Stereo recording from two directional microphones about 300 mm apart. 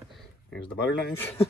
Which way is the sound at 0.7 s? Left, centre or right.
Left.